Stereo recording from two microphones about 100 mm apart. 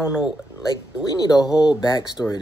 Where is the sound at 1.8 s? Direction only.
45° left (ahead or behind).